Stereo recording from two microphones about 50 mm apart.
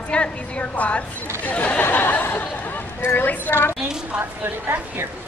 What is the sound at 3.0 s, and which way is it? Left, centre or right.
Speech, left.